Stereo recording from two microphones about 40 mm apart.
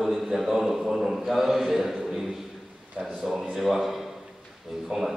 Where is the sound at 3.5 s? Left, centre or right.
Centre.